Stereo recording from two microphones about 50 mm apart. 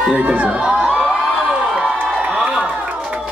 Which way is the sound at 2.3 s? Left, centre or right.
Centre.